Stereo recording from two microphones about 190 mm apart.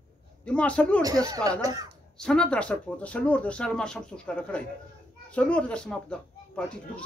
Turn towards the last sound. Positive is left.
turn(degrees=5)  # may be behind; listen again after turning